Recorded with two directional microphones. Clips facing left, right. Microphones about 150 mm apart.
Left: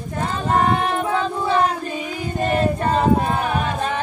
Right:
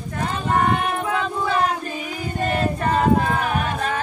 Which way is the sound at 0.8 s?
30° left (ahead or behind).